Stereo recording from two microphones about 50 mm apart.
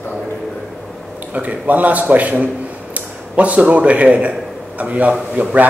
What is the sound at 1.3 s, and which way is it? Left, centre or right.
A man's voice, right.